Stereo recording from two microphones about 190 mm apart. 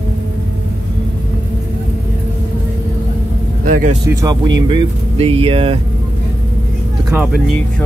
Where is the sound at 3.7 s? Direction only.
45° right (ahead or behind).